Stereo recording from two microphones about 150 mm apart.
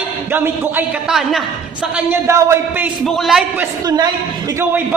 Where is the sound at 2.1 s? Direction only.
20° right (ahead or behind).